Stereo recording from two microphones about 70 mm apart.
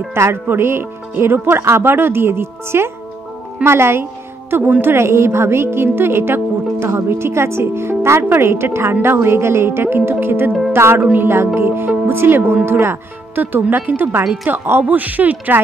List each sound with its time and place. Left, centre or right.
0.1 s a woman's voice: right
11.0 s speech: centre
11.2 s a woman's voice: right